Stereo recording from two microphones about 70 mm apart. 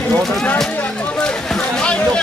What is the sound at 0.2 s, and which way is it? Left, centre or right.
Speech, centre.